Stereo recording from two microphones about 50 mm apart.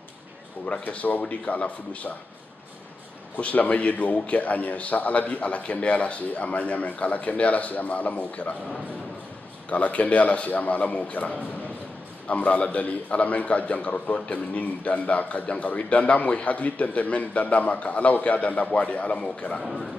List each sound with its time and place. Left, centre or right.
0.7 s a man's voice: left
3.3 s a man's voice: left
9.7 s a man's voice: left
19.6 s a man's voice: centre